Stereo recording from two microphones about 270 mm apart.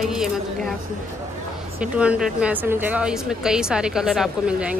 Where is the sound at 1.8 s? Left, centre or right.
Centre.